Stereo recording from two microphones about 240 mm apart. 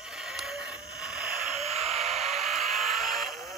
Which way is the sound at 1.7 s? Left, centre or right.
Right.